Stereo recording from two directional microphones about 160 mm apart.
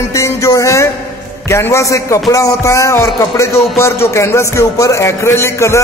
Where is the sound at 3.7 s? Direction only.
15° left (ahead or behind).